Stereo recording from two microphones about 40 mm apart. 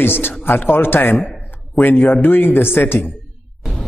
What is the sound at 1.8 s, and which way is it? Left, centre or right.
Speech, left.